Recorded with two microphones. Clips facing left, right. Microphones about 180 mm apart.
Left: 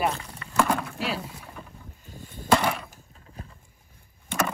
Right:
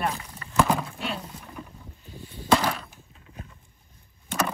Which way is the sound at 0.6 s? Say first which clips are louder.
Right 1 dB; 5° right (ahead or behind).